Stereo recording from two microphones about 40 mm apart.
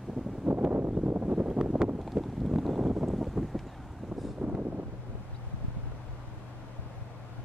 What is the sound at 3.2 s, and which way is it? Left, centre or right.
Wind, centre.